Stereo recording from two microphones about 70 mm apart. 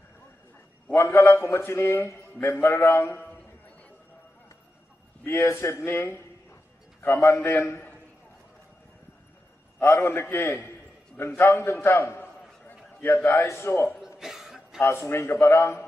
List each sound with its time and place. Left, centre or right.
0.9 s a man's voice: left
5.2 s a man's voice: left
9.8 s a man's voice: left
11.1 s a sound: left
13.1 s a man's voice: left
14.0 s chuckle: centre
14.8 s a man's voice: left